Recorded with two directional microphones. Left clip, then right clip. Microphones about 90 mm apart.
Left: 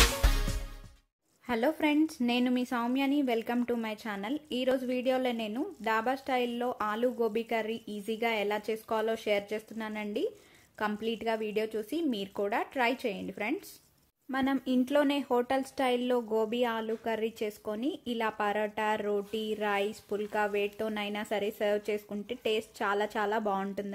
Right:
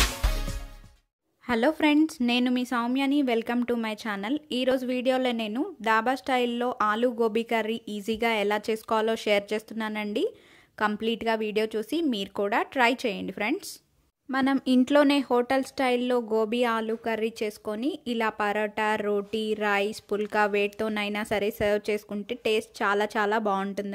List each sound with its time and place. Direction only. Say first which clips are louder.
0.0 s music: even; centre (ahead or behind)
1.5 s speech: right 5 dB; 25° right (ahead or behind)